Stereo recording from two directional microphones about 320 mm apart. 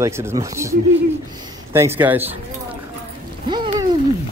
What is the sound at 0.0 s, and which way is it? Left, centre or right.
Frog, centre.